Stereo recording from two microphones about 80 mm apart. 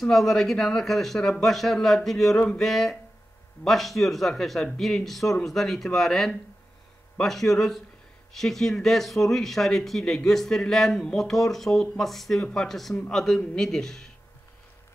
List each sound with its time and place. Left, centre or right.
0.0 s speech: centre